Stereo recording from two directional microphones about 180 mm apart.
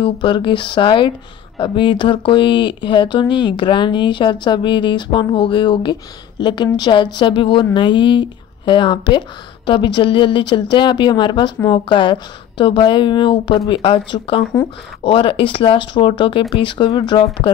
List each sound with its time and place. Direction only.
0.0 s a woman's voice: 30° left (ahead or behind)